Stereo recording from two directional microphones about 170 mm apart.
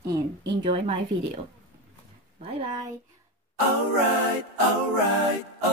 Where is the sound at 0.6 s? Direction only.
30° right (ahead or behind).